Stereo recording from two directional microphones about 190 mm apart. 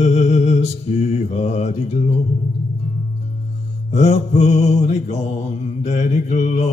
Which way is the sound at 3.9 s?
35° left (ahead or behind).